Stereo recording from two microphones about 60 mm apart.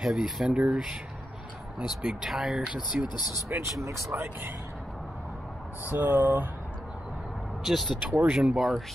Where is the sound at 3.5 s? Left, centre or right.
Right.